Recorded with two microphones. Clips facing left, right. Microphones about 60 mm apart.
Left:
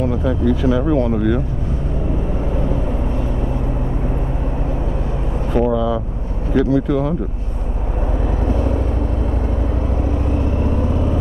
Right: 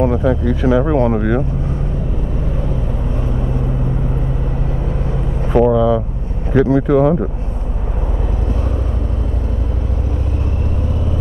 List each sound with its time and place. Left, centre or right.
0.2 s speech: right
5.7 s speech: centre
6.5 s speech: right